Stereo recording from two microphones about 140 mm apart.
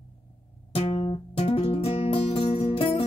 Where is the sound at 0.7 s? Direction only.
40° left (ahead or behind).